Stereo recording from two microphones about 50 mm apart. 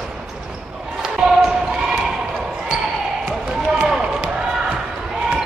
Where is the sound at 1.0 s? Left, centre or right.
Centre.